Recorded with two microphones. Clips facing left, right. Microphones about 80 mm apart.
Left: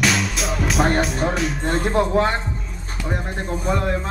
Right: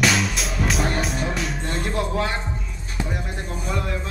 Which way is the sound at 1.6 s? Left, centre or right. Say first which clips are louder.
Left 8 dB; left.